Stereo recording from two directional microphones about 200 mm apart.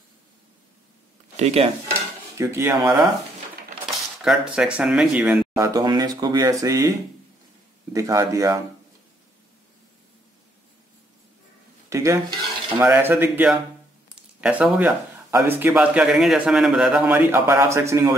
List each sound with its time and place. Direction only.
1.3 s speech: 30° right (ahead or behind)
2.3 s speech: 15° right (ahead or behind)
3.9 s speech: centre (ahead or behind)
5.6 s speech: 20° right (ahead or behind)
7.9 s speech: 15° right (ahead or behind)
11.9 s stir: 15° right (ahead or behind)
12.8 s speech: 10° right (ahead or behind)